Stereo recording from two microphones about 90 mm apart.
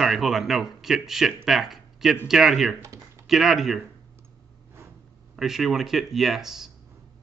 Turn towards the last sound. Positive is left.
turn(degrees=-5)  # may be behind; listen again after turning